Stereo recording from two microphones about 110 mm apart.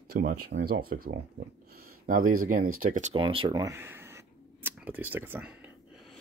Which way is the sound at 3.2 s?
50° right (ahead or behind).